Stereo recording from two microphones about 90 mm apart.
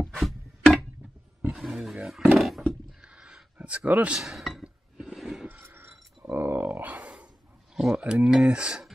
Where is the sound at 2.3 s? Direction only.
Centre (ahead or behind).